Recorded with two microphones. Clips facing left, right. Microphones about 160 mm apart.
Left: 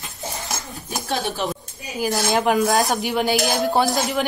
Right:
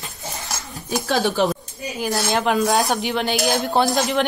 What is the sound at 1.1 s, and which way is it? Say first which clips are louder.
Speech: right 5 dB; 90° right.